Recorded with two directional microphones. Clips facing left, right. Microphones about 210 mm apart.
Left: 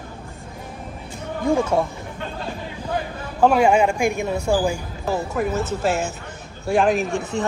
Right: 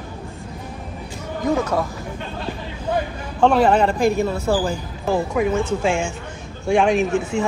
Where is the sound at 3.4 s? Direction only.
10° left (ahead or behind).